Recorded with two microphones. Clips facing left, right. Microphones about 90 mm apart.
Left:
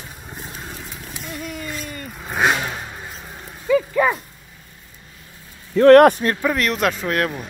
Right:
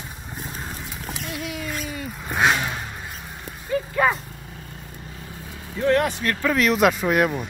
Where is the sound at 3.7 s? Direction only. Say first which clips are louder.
Left 8 dB; 90° left.